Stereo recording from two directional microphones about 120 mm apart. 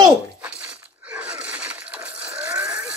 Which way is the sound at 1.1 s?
10° right (ahead or behind).